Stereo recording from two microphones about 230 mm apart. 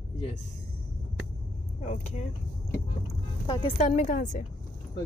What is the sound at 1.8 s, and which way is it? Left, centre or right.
Speech, left.